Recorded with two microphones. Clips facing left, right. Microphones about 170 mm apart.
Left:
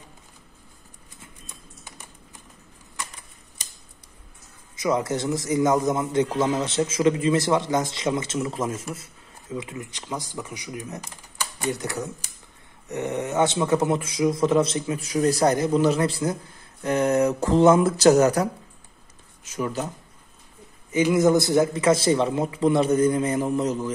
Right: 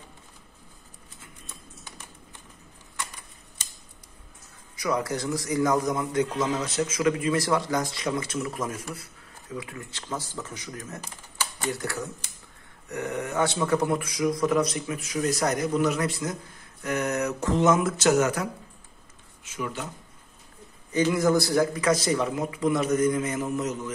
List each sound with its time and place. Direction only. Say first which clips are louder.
4.7 s a man's voice: left 4 dB; 20° left (ahead or behind); by 19.9 s 40° left (ahead or behind)
20.9 s a man's voice: left 4 dB; 20° left (ahead or behind)